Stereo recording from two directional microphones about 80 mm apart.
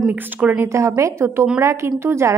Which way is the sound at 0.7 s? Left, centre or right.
Right.